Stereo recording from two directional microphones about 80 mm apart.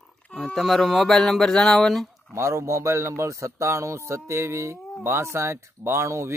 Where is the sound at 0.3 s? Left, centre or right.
Centre.